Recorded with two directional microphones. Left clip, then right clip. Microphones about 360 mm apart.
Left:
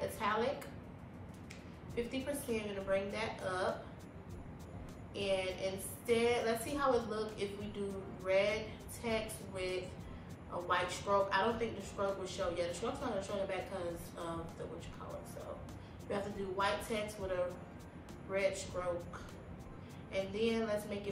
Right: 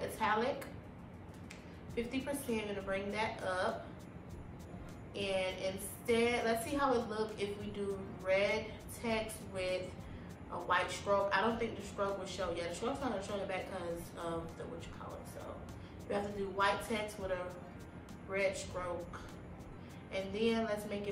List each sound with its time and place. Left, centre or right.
0.0 s music: centre
2.0 s a woman's voice: centre
5.1 s a woman's voice: centre
16.1 s a woman's voice: centre
20.1 s a woman's voice: centre